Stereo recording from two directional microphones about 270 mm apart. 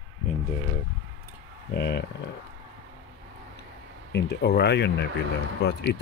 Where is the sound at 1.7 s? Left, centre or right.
Left.